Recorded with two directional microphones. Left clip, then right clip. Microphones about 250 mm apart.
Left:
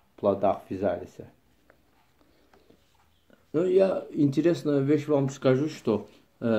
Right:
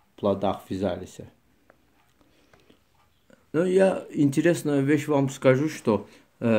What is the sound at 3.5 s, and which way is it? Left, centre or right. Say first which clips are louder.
Speech: right 1 dB; right.